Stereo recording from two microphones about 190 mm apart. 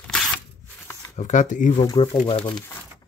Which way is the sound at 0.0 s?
5° left (ahead or behind).